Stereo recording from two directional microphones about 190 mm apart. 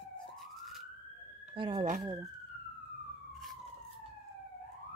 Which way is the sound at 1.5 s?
25° right (ahead or behind).